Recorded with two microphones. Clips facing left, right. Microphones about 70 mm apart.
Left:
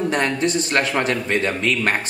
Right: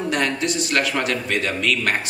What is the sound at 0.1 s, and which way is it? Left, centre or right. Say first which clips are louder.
A man's voice: left 2 dB; left.